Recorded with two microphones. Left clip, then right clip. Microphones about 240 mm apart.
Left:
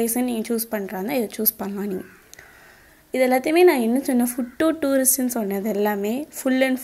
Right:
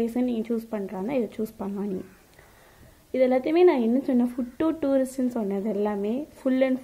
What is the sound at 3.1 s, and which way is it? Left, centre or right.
A woman's voice, centre.